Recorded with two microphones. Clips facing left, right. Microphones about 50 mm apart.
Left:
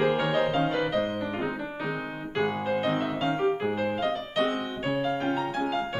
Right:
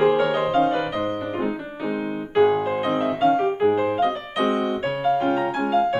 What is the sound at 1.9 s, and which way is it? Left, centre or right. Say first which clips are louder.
Music: right 7 dB; centre.